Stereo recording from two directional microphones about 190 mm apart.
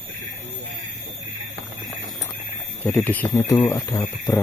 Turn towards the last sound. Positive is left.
turn(degrees=15)  # may be behind; listen again after turning